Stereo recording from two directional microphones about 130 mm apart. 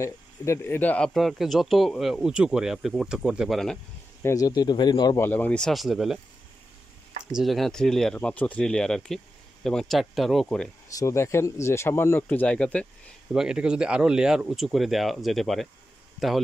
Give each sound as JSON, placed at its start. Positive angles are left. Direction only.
{"t": 0.0, "sound": "speech", "side_deg": 20}
{"t": 4.2, "sound": "speech", "side_deg": 25}
{"t": 5.2, "sound": "speech", "side_deg": 15}
{"t": 7.3, "sound": "speech", "side_deg": 0}
{"t": 10.9, "sound": "speech", "side_deg": 25}
{"t": 13.3, "sound": "speech", "side_deg": -5}